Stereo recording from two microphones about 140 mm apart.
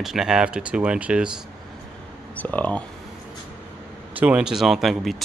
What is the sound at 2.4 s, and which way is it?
Speech, 10° left (ahead or behind).